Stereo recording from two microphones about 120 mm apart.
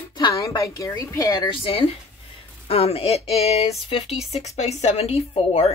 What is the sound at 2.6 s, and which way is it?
A woman's voice, 55° left (ahead or behind).